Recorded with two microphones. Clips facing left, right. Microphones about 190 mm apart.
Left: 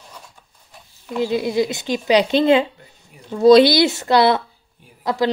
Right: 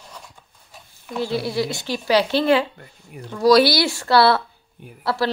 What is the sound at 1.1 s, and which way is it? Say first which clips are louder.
A woman's voice: left 4 dB; 15° left (ahead or behind).